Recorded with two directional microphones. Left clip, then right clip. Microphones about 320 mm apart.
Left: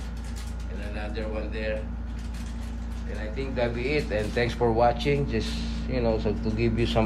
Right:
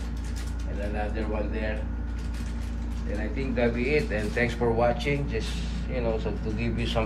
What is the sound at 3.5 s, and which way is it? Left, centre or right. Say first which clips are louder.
A man's voice: right 2 dB; centre.